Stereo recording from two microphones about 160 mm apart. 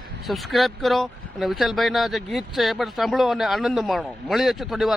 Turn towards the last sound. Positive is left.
turn(degrees=0)  # may be behind; listen again after turning